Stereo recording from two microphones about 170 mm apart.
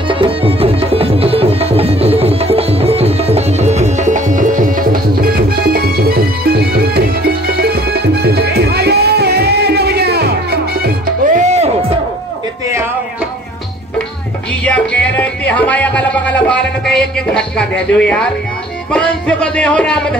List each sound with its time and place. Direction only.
0.1 s music: 30° right (ahead or behind)
14.6 s music: 10° left (ahead or behind)
18.9 s speech: 5° left (ahead or behind)